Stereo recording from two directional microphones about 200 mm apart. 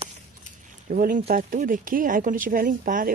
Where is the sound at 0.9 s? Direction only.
45° right (ahead or behind).